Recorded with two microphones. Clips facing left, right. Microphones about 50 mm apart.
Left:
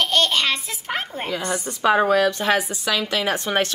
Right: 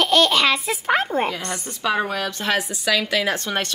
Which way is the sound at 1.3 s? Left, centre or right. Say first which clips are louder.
Left 4 dB; centre.